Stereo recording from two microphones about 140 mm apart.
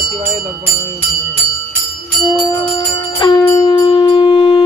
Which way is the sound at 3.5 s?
35° left (ahead or behind).